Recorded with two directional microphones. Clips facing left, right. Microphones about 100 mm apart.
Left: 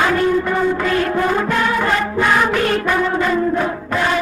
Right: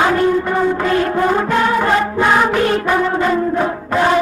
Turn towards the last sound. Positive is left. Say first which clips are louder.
# right 4 dB
turn(degrees=-30)  # may be behind; listen again after turning